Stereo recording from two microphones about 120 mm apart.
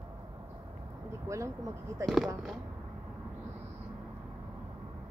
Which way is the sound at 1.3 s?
25° right (ahead or behind).